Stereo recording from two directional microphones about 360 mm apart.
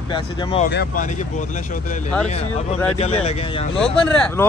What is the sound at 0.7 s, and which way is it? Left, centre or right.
Speech, left.